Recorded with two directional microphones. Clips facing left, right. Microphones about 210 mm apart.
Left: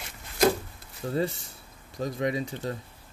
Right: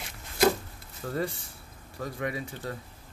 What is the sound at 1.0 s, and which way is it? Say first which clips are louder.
Speech: left 3 dB; 20° left (ahead or behind).